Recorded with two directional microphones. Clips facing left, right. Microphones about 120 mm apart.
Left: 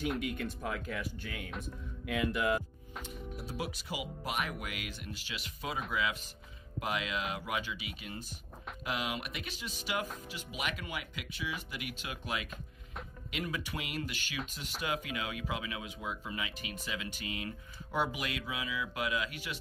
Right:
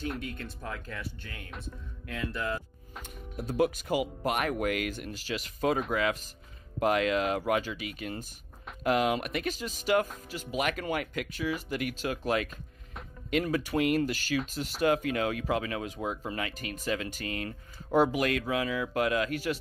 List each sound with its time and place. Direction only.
0.2 s speech: 10° left (ahead or behind)
3.3 s speech: 50° right (ahead or behind)